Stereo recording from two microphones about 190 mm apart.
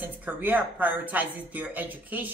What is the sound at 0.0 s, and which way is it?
Speech, 10° right (ahead or behind).